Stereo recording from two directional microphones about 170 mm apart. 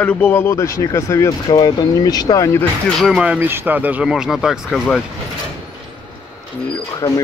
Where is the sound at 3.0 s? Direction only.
5° right (ahead or behind).